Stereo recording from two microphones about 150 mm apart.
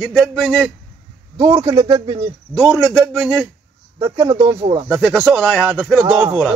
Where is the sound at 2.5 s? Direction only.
Centre (ahead or behind).